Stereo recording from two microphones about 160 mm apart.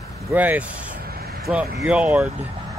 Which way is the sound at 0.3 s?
10° right (ahead or behind).